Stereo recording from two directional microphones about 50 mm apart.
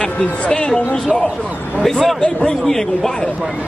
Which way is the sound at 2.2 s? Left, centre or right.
Centre.